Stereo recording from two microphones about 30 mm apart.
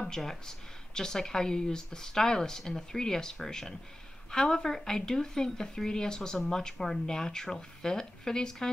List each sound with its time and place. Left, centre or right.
0.0 s a woman's voice: centre